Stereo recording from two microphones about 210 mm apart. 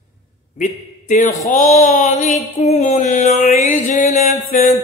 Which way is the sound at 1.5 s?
35° left (ahead or behind).